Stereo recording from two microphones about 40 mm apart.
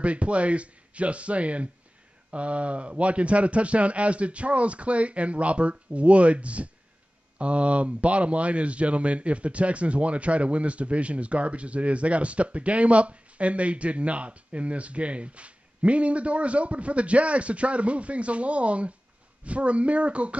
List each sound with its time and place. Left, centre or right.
0.0 s speech: right